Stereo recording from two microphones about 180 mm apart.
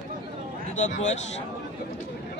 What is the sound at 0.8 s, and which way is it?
Speech, 40° left (ahead or behind).